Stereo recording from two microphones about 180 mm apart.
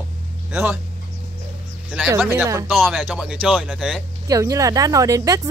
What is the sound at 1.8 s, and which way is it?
Speech, 5° right (ahead or behind).